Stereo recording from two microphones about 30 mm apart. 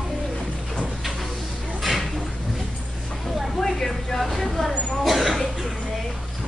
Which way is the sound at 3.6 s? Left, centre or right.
Centre.